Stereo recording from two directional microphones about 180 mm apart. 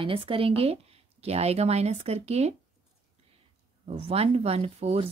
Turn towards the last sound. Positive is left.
turn(degrees=-35)  # may be behind; listen again after turning